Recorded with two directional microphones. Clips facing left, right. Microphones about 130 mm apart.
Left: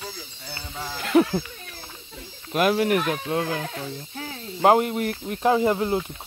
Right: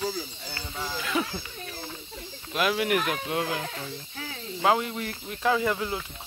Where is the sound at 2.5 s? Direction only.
40° left (ahead or behind).